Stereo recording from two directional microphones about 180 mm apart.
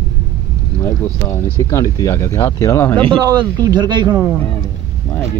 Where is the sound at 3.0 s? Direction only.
25° right (ahead or behind).